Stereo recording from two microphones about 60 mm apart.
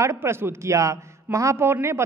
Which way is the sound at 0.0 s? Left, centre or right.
Right.